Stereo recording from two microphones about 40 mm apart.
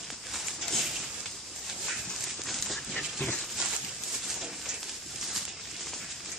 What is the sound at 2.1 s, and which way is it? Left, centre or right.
Dog, centre.